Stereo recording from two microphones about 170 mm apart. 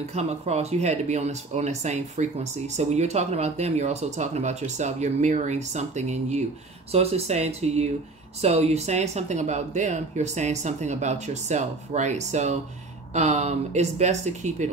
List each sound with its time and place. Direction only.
0.1 s speech: 40° right (ahead or behind)